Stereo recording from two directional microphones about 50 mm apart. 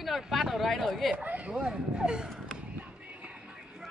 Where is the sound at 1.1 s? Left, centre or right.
Right.